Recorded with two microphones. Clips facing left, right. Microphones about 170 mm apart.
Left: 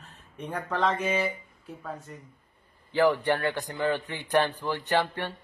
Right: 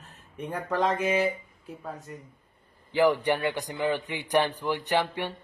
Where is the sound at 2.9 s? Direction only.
15° right (ahead or behind).